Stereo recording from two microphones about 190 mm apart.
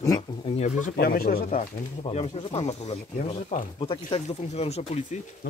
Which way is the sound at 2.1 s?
35° left (ahead or behind).